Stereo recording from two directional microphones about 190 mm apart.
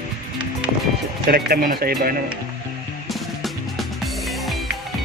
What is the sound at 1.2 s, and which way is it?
Speech, 55° right (ahead or behind).